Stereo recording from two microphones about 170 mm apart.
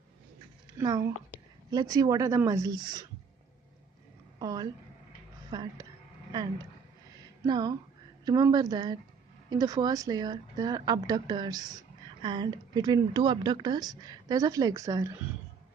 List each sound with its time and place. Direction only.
0.7 s a woman's voice: 20° right (ahead or behind)
4.4 s a woman's voice: 20° right (ahead or behind)
7.4 s a woman's voice: 25° right (ahead or behind)